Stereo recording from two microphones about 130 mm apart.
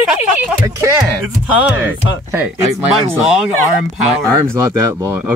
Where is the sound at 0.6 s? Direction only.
25° right (ahead or behind).